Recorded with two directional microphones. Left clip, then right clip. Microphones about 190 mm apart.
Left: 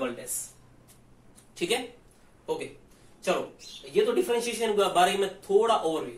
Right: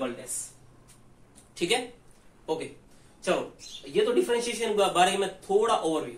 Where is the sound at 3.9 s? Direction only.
25° right (ahead or behind).